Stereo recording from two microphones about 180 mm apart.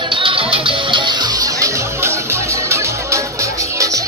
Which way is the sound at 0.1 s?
30° right (ahead or behind).